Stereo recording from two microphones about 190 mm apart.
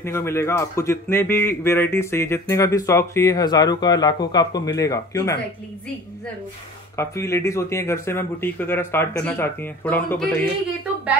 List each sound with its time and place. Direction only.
0.0 s a man's voice: 15° left (ahead or behind)
7.0 s a man's voice: 15° left (ahead or behind)